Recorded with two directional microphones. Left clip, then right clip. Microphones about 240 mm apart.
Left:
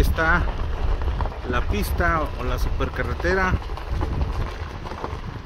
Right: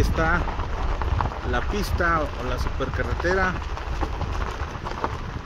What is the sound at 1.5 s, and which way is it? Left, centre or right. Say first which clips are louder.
Speech: even; centre.